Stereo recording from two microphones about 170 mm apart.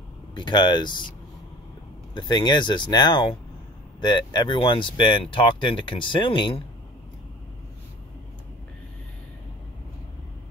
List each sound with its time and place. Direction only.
0.3 s speech: 30° left (ahead or behind)
2.1 s speech: 25° left (ahead or behind)